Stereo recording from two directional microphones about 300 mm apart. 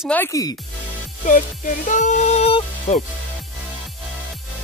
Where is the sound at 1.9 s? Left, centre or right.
Left.